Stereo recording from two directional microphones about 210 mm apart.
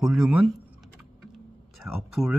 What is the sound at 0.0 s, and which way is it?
Speech, centre (ahead or behind).